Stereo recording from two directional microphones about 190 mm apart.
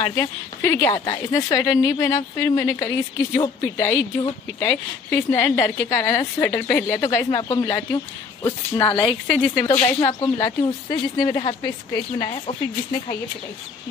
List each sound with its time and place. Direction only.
0.0 s speech: 15° left (ahead or behind)
8.8 s a woman's voice: 25° left (ahead or behind)
9.3 s speech: 5° left (ahead or behind)
9.7 s a woman's voice: 25° left (ahead or behind)